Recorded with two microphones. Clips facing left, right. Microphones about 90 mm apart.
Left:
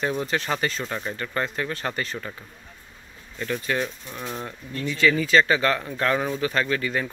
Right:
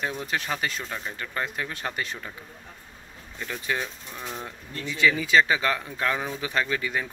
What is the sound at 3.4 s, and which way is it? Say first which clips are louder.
Speech: left 4 dB; 10° right (ahead or behind).